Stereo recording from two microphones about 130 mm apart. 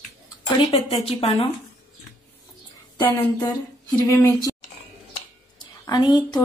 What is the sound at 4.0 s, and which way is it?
Speech, 20° left (ahead or behind).